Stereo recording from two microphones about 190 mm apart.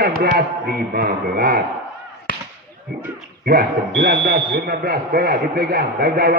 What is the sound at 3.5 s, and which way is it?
Speech, 55° right (ahead or behind).